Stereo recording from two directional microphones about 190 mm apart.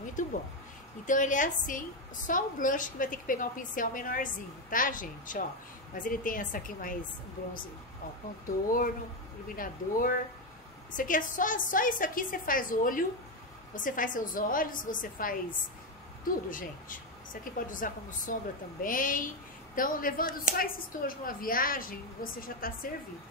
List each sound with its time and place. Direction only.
0.0 s a sound: 40° left (ahead or behind)
1.0 s speech: 40° left (ahead or behind)
8.5 s speech: 45° left (ahead or behind)
16.4 s speech: 45° left (ahead or behind)